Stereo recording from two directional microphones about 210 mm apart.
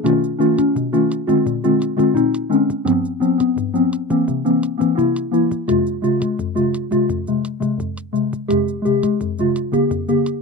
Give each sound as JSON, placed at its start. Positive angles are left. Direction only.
{"t": 0.0, "sound": "music", "side_deg": -5}